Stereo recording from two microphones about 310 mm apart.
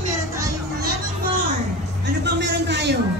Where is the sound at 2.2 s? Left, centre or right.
Right.